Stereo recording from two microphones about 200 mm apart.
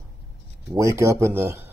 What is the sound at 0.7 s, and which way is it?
Speech, 15° right (ahead or behind).